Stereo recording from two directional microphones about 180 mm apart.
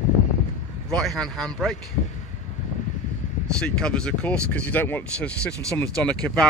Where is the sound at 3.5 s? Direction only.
5° left (ahead or behind).